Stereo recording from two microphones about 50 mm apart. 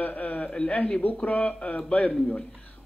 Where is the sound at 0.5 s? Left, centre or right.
Centre.